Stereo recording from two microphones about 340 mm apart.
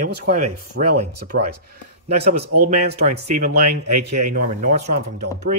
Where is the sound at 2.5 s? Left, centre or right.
Right.